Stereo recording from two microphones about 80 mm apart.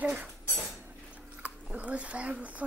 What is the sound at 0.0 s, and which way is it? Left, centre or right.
Cutlery, centre.